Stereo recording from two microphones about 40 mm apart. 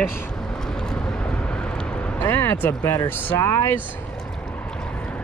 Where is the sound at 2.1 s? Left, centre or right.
Left.